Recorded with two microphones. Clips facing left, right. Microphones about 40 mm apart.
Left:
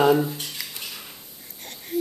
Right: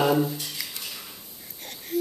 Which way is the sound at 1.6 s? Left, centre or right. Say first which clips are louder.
Even; centre.